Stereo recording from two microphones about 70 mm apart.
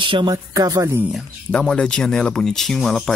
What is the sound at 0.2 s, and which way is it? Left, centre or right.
Speech, right.